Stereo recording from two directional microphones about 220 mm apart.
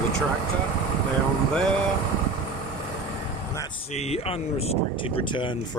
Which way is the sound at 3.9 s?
30° left (ahead or behind).